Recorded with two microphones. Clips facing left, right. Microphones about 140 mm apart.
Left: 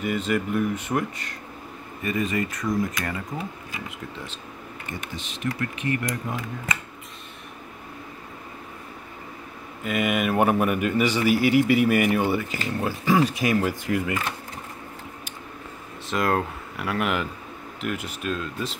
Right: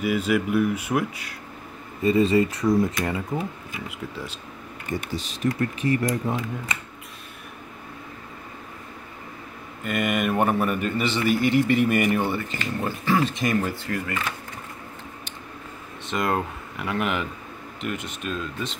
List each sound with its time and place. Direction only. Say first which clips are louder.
0.0 s speech: right 2 dB; 5° right (ahead or behind)
2.0 s speech: right 7 dB; 30° right (ahead or behind)
5.1 s speech: right 3 dB; 40° right (ahead or behind)
9.8 s a man's voice: even; centre (ahead or behind)
16.1 s speech: left 1 dB; centre (ahead or behind)